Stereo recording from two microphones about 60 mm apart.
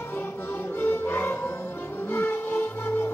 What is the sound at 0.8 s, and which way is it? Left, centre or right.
Music, left.